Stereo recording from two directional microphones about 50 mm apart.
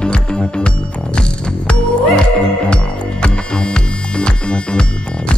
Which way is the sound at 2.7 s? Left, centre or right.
Centre.